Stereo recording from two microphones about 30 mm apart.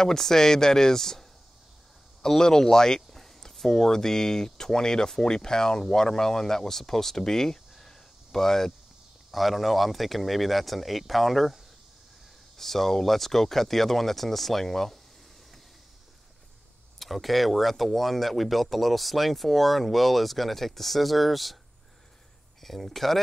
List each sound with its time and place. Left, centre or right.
0.0 s speech: centre
2.2 s speech: centre
9.3 s speech: centre
17.0 s speech: centre
22.6 s speech: centre